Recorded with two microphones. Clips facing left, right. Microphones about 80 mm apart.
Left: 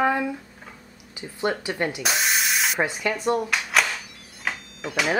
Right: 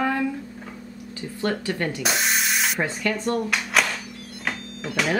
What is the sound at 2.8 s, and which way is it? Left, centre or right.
Speech, centre.